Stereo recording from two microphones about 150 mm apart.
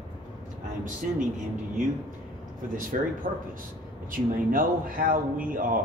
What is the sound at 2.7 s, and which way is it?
Speech, 65° right (ahead or behind).